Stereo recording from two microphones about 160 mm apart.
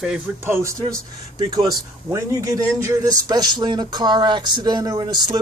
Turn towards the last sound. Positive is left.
turn(degrees=-25)  # may be behind; listen again after turning